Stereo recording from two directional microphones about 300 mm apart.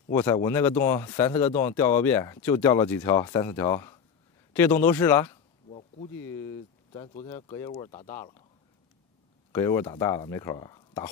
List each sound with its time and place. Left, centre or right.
0.1 s speech: centre
5.7 s insect: left
6.2 s speech: centre
9.5 s speech: centre